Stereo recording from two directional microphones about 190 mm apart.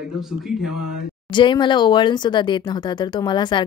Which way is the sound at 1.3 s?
25° left (ahead or behind).